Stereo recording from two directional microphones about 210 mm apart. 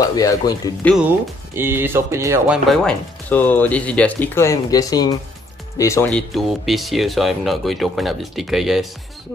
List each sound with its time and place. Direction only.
0.1 s speech: 15° left (ahead or behind)
0.8 s speech: 5° right (ahead or behind)